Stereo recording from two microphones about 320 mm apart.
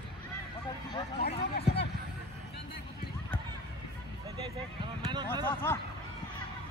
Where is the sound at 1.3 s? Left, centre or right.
Centre.